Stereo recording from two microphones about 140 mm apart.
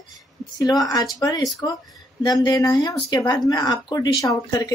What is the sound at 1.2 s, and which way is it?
A woman's voice, 30° left (ahead or behind).